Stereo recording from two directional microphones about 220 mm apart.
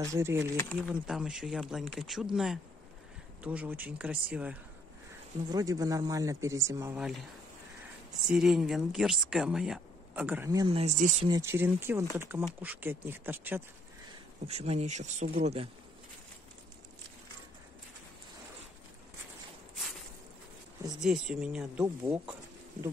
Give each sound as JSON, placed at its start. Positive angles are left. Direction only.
{"t": 0.0, "sound": "speech", "side_deg": -10}
{"t": 0.6, "sound": "speech", "side_deg": 10}
{"t": 1.0, "sound": "speech", "side_deg": -5}
{"t": 5.5, "sound": "speech", "side_deg": -15}
{"t": 8.3, "sound": "speech", "side_deg": 0}
{"t": 10.7, "sound": "speech", "side_deg": -30}
{"t": 11.2, "sound": "speech", "side_deg": -15}
{"t": 14.5, "sound": "speech", "side_deg": -30}
{"t": 21.0, "sound": "speech", "side_deg": -5}